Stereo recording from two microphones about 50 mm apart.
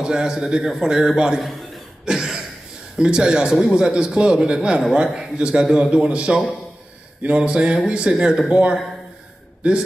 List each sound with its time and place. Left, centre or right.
0.0 s speech: centre
2.0 s a sound: centre
3.0 s a man's voice: centre